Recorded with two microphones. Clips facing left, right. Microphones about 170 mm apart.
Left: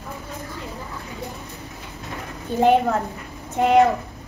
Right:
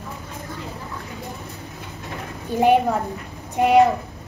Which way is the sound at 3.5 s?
10° right (ahead or behind).